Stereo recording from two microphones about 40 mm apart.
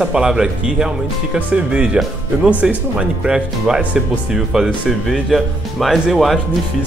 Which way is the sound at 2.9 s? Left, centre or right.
Centre.